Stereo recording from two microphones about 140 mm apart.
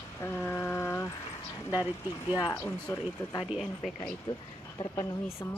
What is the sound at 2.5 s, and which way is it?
Speech, 15° left (ahead or behind).